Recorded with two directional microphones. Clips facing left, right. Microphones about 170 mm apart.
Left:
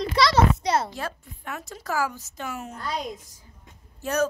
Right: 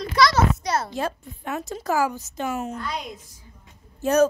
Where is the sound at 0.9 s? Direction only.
20° right (ahead or behind).